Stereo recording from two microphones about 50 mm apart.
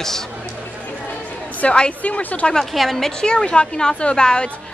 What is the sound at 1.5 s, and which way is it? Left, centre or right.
Speech, left.